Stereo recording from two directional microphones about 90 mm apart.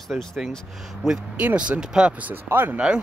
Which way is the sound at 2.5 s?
20° right (ahead or behind).